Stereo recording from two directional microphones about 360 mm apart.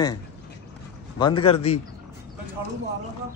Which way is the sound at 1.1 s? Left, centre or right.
Centre.